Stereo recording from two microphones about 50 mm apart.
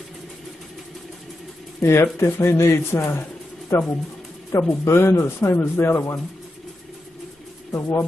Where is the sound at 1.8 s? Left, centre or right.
Left.